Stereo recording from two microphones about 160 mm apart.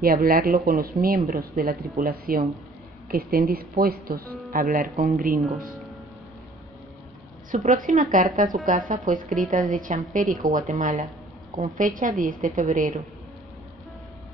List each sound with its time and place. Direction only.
0.0 s speech: 65° right (ahead or behind)
7.5 s speech: 55° right (ahead or behind)